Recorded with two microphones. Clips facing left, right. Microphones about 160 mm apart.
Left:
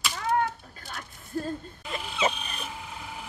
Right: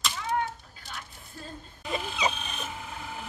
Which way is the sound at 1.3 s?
50° left (ahead or behind).